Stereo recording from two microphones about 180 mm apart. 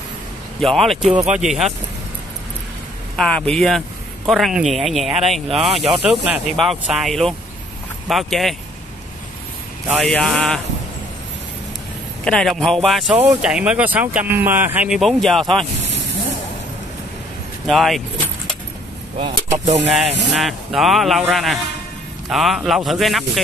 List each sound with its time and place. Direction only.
0.6 s speech: centre (ahead or behind)
3.2 s speech: 5° left (ahead or behind)
9.8 s speech: 5° right (ahead or behind)
12.3 s speech: 5° left (ahead or behind)
17.6 s speech: centre (ahead or behind)
19.1 s speech: 35° right (ahead or behind)
19.8 s speech: centre (ahead or behind)